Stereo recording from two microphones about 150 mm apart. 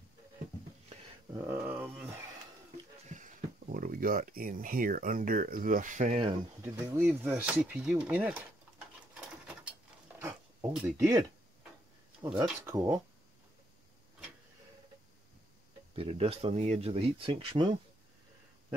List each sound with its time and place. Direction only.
1.3 s speech: 20° right (ahead or behind)
1.6 s speech: 10° right (ahead or behind)
3.1 s speech: 55° right (ahead or behind)
6.6 s speech: 15° right (ahead or behind)
10.2 s a sound: 10° right (ahead or behind)
12.4 s speech: 20° right (ahead or behind)
16.0 s speech: 40° right (ahead or behind)